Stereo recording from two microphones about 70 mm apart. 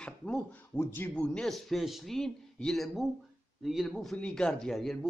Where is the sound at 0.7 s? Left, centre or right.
Left.